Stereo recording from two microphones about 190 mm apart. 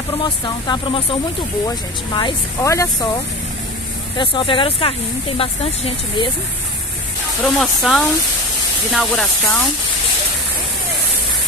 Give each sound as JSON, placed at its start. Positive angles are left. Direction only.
{"t": 0.2, "sound": "speech", "side_deg": 25}
{"t": 2.1, "sound": "speech", "side_deg": 20}
{"t": 4.2, "sound": "speech", "side_deg": 25}
{"t": 7.4, "sound": "speech", "side_deg": 0}